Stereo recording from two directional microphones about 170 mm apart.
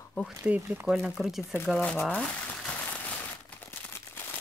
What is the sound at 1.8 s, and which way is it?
Speech, 10° left (ahead or behind).